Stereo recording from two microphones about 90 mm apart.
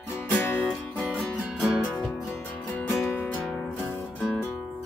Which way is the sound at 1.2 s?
10° right (ahead or behind).